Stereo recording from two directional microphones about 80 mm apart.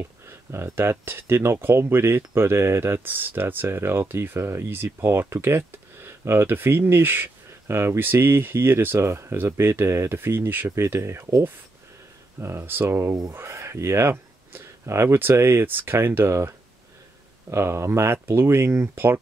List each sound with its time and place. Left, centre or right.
0.0 s speech: right